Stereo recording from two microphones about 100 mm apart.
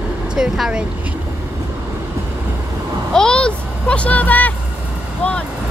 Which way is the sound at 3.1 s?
10° left (ahead or behind).